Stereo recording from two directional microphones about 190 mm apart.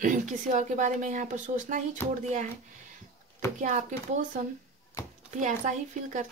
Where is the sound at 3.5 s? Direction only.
40° right (ahead or behind).